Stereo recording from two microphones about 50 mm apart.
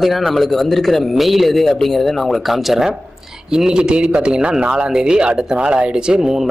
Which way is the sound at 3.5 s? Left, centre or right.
Centre.